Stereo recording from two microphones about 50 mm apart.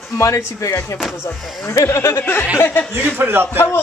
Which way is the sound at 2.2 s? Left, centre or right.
Left.